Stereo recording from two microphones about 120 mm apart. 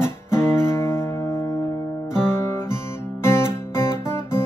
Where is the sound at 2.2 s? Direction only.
20° left (ahead or behind).